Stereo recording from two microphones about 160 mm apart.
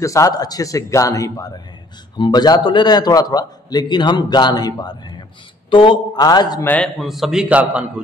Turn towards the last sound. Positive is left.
turn(degrees=-10)  # may be behind; listen again after turning